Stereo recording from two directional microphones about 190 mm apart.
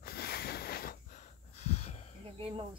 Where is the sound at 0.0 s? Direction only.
55° left (ahead or behind); by 2.0 s 35° left (ahead or behind).